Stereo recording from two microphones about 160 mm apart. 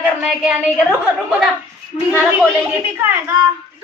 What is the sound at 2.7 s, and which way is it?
Speech, 10° right (ahead or behind).